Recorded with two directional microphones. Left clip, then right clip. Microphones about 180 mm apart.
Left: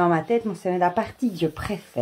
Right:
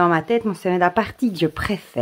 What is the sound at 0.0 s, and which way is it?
Speech, 25° right (ahead or behind).